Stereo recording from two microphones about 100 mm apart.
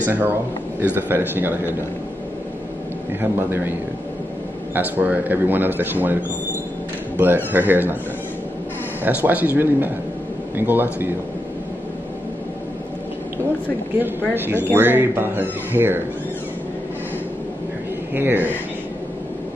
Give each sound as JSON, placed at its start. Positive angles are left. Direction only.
{"t": 0.0, "sound": "a man's voice", "side_deg": -20}
{"t": 3.2, "sound": "a man's voice", "side_deg": -20}
{"t": 4.7, "sound": "a man's voice", "side_deg": -15}
{"t": 7.2, "sound": "a man's voice", "side_deg": -20}
{"t": 9.0, "sound": "a man's voice", "side_deg": -15}
{"t": 14.3, "sound": "a man's voice", "side_deg": -20}
{"t": 18.1, "sound": "a man's voice", "side_deg": -20}